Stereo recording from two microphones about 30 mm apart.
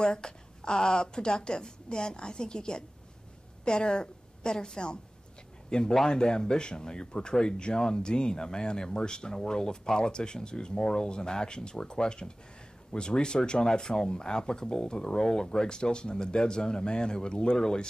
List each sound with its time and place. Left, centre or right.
0.0 s a woman's voice: left
10.8 s speech: centre
11.1 s speech: left